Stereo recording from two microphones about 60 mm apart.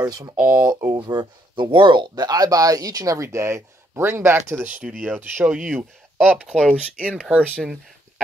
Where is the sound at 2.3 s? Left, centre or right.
Right.